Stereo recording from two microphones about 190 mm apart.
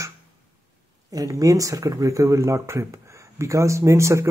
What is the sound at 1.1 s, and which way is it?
Speech, 20° right (ahead or behind).